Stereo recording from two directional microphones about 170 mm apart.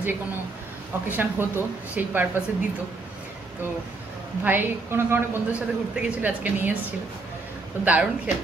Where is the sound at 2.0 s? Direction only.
10° right (ahead or behind).